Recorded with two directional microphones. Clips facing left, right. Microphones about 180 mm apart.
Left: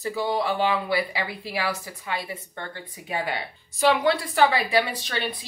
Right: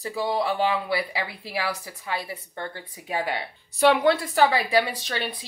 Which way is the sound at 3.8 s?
60° right (ahead or behind).